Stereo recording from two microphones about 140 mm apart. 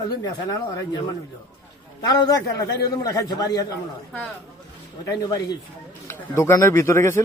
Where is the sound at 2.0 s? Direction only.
30° left (ahead or behind).